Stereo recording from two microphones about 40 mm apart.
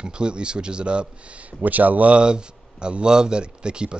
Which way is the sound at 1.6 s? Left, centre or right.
Right.